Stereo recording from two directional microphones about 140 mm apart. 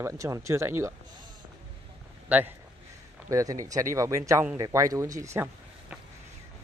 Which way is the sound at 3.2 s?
25° right (ahead or behind).